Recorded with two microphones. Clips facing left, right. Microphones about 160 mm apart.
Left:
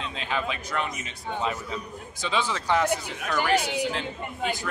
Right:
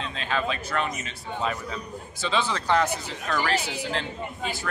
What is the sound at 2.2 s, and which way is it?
A man's voice, 10° left (ahead or behind).